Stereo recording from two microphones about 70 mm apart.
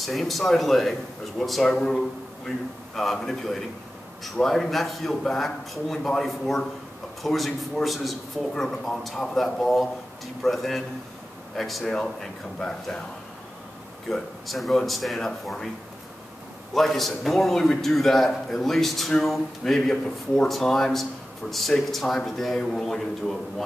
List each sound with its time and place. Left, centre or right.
0.0 s a man's voice: centre
14.0 s a man's voice: centre
16.7 s a man's voice: centre